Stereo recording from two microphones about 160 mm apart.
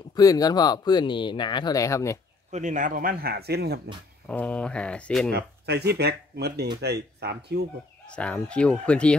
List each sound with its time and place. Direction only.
0.1 s speech: 25° left (ahead or behind)
2.5 s speech: 50° right (ahead or behind); by 3.9 s 90° right
4.3 s speech: 5° left (ahead or behind)
5.3 s speech: 90° right
8.1 s speech: 5° left (ahead or behind)